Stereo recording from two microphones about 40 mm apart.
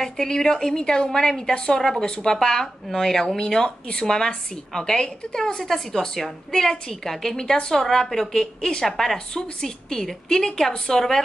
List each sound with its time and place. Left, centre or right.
0.0 s a woman's voice: centre
3.5 s a woman's voice: left
5.6 s a woman's voice: centre